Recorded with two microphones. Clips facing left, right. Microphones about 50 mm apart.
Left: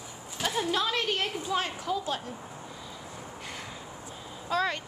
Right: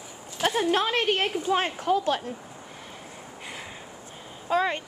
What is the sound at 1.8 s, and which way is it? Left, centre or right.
Speech, right.